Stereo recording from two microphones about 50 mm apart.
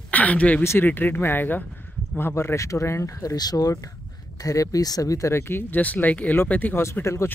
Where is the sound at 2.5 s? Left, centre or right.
Left.